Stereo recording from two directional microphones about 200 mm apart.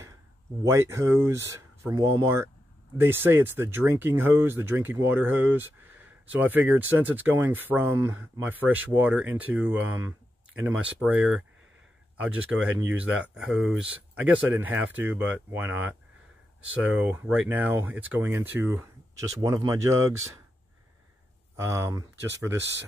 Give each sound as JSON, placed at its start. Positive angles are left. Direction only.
{"t": 0.7, "sound": "speech", "side_deg": -15}
{"t": 21.5, "sound": "speech", "side_deg": -15}